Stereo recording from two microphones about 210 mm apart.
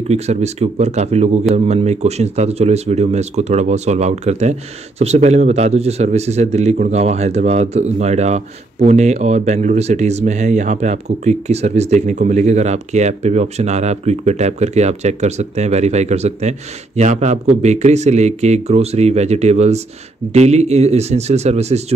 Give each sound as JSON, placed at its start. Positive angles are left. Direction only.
{"t": 0.1, "sound": "speech", "side_deg": -30}